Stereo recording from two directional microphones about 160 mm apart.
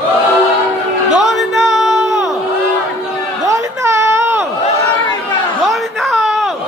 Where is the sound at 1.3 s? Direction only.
Centre (ahead or behind).